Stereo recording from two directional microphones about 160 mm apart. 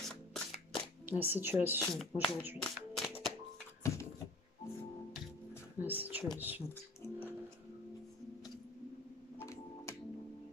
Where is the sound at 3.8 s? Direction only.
20° left (ahead or behind).